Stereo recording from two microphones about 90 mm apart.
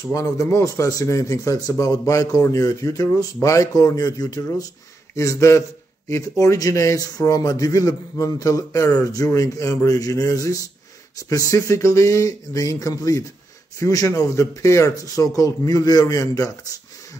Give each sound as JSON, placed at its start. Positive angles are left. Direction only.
{"t": 0.1, "sound": "speech", "side_deg": 35}